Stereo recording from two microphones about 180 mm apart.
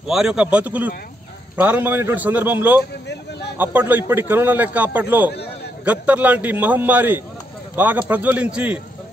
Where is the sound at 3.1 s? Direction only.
70° left (ahead or behind).